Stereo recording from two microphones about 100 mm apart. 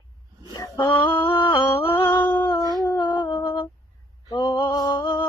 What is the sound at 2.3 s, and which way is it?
Howl, 55° left (ahead or behind).